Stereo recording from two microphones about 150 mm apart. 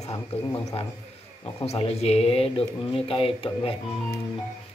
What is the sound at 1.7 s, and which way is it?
A man's voice, 45° left (ahead or behind).